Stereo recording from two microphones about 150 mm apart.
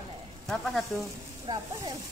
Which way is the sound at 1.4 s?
30° right (ahead or behind).